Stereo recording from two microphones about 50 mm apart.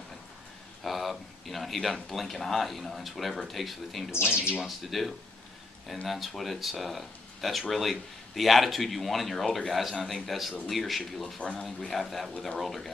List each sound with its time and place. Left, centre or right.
0.8 s speech: centre
4.3 s speech: centre
4.6 s speech: centre
11.3 s speech: centre
12.0 s speech: centre